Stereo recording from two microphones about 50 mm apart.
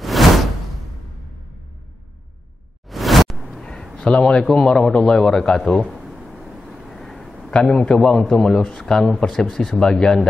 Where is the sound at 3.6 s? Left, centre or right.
Centre.